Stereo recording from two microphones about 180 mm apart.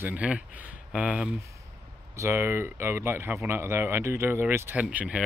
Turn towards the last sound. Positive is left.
turn(degrees=-5)  # may be behind; listen again after turning